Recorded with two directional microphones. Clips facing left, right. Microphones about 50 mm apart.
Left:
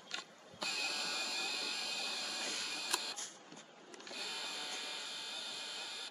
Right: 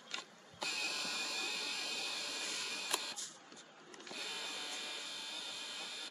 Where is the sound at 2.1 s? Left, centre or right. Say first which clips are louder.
Left 1 dB; right.